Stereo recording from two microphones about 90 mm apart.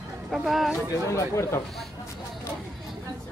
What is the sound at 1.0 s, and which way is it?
Speech, 35° left (ahead or behind).